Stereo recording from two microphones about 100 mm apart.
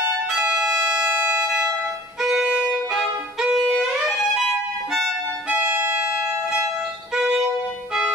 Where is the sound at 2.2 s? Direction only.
5° right (ahead or behind).